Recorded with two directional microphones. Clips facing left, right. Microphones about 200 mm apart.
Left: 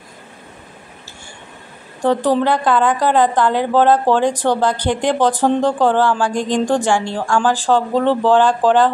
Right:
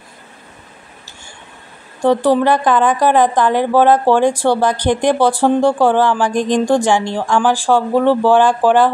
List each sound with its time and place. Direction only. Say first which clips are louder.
2.0 s a woman's voice: right 3 dB; 15° right (ahead or behind)